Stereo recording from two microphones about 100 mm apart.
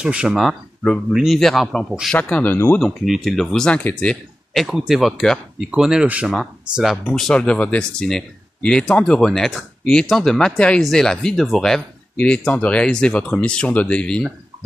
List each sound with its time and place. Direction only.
0.0 s speech: 10° right (ahead or behind)
2.4 s speech: 20° left (ahead or behind)
2.8 s speech: centre (ahead or behind)
4.6 s speech: 5° right (ahead or behind)